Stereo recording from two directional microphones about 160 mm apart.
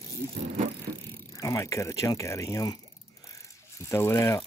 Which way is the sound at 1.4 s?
20° left (ahead or behind).